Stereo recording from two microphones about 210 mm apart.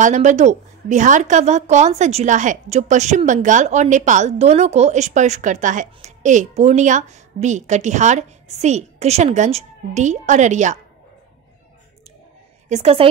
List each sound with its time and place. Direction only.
0.0 s a woman's voice: 35° right (ahead or behind)
12.6 s a woman's voice: 30° right (ahead or behind)